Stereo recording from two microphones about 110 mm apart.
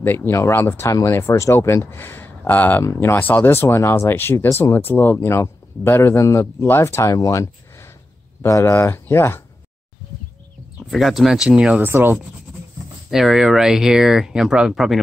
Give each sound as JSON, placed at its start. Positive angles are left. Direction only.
{"t": 0.0, "sound": "speech", "side_deg": 20}
{"t": 10.9, "sound": "speech", "side_deg": 0}
{"t": 13.1, "sound": "speech", "side_deg": 0}